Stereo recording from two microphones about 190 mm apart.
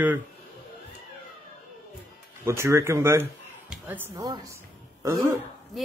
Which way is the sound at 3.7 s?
10° right (ahead or behind).